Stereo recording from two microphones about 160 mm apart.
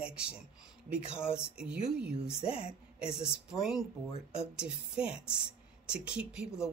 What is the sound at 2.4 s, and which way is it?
Speech, 35° left (ahead or behind).